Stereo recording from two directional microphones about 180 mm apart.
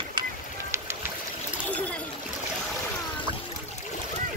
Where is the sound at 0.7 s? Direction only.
15° right (ahead or behind).